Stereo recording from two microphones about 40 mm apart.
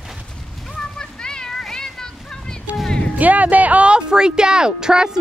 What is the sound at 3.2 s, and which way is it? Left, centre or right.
Speech, right.